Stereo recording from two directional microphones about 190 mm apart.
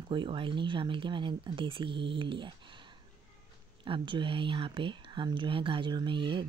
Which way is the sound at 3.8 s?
25° right (ahead or behind).